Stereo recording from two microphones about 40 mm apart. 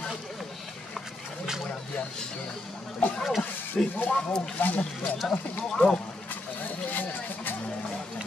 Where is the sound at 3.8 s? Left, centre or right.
Left.